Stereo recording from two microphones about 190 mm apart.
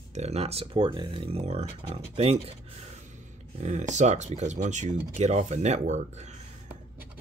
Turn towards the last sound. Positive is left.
turn(degrees=-35)  # may be behind; listen again after turning